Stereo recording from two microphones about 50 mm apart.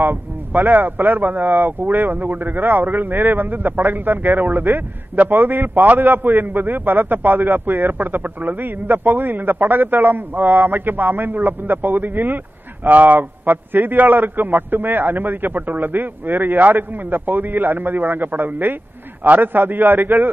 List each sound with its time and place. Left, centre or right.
0.0 s speech: right